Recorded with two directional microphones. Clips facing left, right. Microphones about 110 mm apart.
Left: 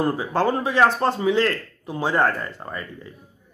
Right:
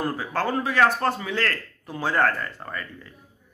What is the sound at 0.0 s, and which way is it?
Speech, 20° left (ahead or behind).